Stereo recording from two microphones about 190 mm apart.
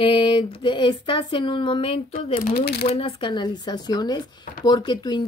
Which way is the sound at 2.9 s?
25° left (ahead or behind).